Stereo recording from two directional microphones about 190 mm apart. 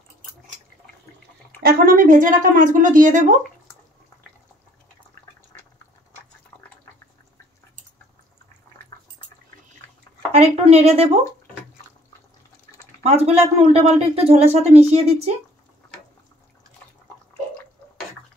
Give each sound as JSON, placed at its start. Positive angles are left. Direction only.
{"t": 1.6, "sound": "a woman's voice", "side_deg": -45}
{"t": 10.3, "sound": "speech", "side_deg": -30}
{"t": 13.0, "sound": "speech", "side_deg": -35}